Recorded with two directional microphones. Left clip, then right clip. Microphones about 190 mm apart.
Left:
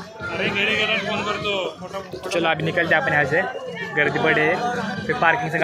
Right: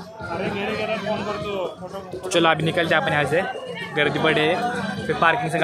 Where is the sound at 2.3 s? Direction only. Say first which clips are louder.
Right 3 dB; 45° right (ahead or behind).